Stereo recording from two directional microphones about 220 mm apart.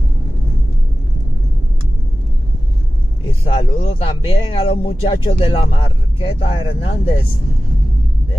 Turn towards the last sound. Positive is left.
turn(degrees=25)  # may be behind; listen again after turning